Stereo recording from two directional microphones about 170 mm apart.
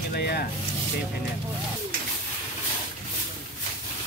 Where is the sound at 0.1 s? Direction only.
65° left (ahead or behind).